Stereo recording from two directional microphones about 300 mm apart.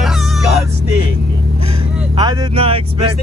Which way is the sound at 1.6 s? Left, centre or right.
Centre.